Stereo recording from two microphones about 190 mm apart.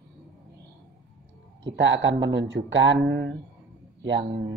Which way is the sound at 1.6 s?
75° right (ahead or behind).